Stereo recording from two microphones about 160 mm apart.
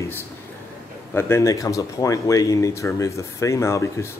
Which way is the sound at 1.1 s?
15° left (ahead or behind).